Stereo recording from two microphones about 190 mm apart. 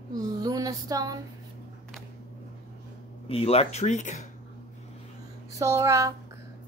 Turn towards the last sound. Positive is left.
turn(degrees=-15)  # may be behind; listen again after turning